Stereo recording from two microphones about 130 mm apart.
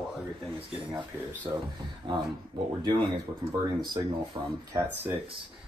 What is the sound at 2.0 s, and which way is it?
Speech, 40° right (ahead or behind).